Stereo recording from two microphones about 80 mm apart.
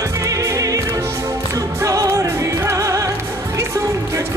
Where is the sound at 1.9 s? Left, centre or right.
Right.